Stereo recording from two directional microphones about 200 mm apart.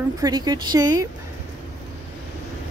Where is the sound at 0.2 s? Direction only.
20° right (ahead or behind).